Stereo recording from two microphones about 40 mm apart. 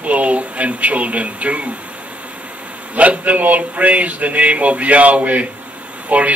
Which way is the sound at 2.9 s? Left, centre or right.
Right.